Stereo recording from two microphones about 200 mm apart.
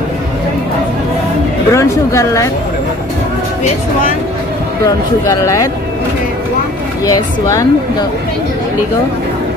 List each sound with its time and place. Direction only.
1.7 s speech: 15° left (ahead or behind)
4.8 s speech: 15° left (ahead or behind)
7.1 s speech: 15° left (ahead or behind)